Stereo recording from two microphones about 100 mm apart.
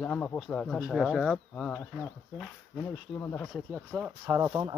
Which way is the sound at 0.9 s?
Centre (ahead or behind).